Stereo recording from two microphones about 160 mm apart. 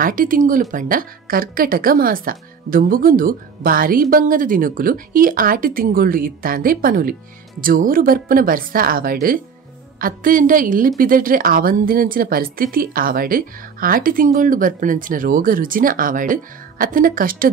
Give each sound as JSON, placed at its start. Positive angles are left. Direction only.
{"t": 0.0, "sound": "speech", "side_deg": -60}